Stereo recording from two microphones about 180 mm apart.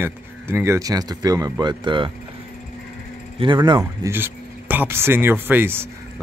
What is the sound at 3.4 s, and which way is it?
Speech, 25° right (ahead or behind).